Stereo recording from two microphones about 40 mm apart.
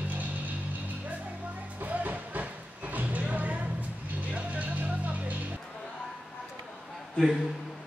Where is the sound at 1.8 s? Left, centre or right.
Right.